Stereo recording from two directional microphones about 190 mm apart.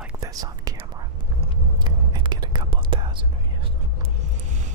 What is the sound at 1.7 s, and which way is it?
Whispering, 25° right (ahead or behind).